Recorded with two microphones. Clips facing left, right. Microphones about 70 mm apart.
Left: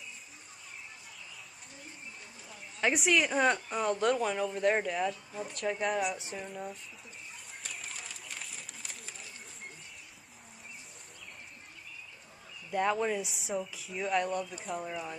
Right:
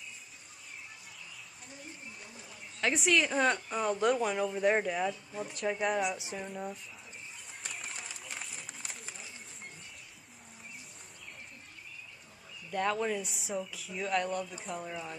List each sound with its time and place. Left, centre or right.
3.0 s speech: centre
5.9 s speech: centre
6.3 s speech: centre
7.6 s a sound: centre
12.7 s speech: centre